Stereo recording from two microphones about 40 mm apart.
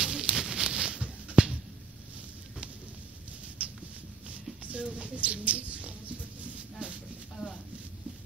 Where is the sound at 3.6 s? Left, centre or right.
Right.